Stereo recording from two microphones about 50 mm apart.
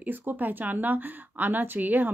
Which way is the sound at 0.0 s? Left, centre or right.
Right.